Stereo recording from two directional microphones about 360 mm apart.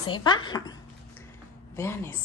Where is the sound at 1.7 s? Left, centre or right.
Centre.